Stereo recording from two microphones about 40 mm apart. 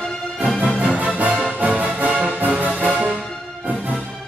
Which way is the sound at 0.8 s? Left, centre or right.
Right.